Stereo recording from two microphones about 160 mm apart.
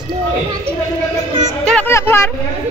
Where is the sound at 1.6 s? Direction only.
5° left (ahead or behind).